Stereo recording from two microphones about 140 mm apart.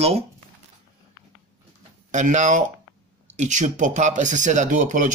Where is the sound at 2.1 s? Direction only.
60° right (ahead or behind).